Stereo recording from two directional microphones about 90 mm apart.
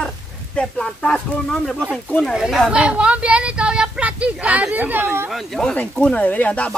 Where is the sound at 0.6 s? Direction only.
10° left (ahead or behind).